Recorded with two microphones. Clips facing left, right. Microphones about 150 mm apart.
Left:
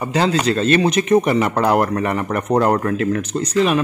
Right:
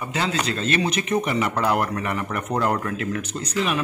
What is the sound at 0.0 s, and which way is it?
Speech, 40° left (ahead or behind).